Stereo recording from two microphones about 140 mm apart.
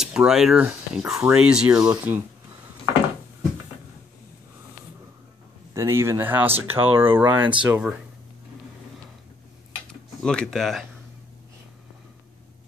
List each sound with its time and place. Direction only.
0.0 s speech: 5° right (ahead or behind)
1.8 s speech: 20° right (ahead or behind)
5.8 s speech: 20° right (ahead or behind)
10.2 s speech: 5° left (ahead or behind)